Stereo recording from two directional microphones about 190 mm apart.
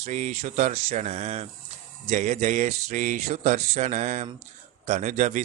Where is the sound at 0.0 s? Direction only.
35° right (ahead or behind).